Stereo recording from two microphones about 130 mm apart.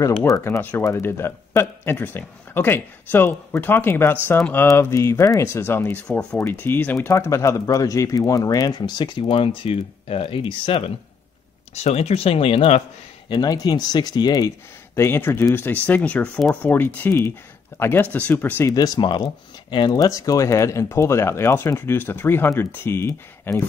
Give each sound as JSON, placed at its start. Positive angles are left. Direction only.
{"t": 0.3, "sound": "speech", "side_deg": 20}
{"t": 11.7, "sound": "speech", "side_deg": 55}
{"t": 13.3, "sound": "speech", "side_deg": 30}
{"t": 15.0, "sound": "speech", "side_deg": 20}
{"t": 18.7, "sound": "speech", "side_deg": 35}